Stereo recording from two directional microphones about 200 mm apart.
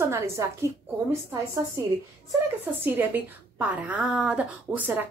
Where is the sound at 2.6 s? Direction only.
10° right (ahead or behind).